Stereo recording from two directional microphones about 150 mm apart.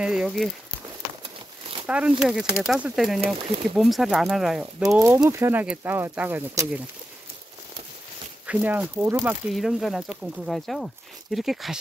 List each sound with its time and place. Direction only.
0.0 s speech: 5° right (ahead or behind)
1.9 s speech: 10° right (ahead or behind)
4.8 s speech: 15° right (ahead or behind)
8.5 s speech: 10° right (ahead or behind)
9.5 s speech: centre (ahead or behind)